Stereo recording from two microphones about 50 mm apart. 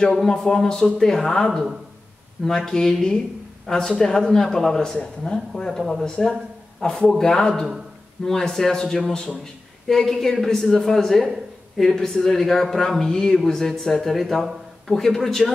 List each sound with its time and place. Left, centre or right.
0.3 s speech: centre
5.7 s speech: centre
6.0 s speech: centre